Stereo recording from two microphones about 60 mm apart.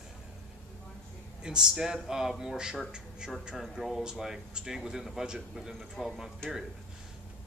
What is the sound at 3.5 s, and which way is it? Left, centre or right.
Speech, centre.